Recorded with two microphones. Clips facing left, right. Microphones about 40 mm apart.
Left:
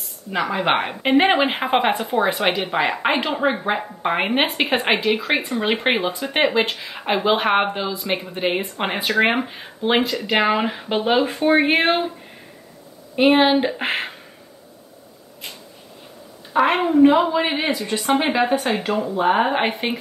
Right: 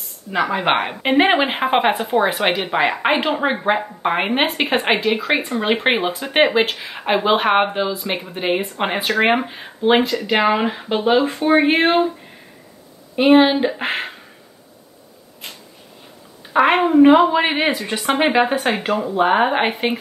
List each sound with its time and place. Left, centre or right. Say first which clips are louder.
0.3 s a woman's voice: right 2 dB; centre
2.1 s a woman's voice: right 2 dB; centre
13.1 s speech: right 2 dB; centre
16.5 s a woman's voice: right 3 dB; centre